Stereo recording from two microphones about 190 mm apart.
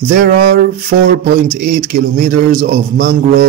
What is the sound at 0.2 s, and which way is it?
Speech, 55° right (ahead or behind).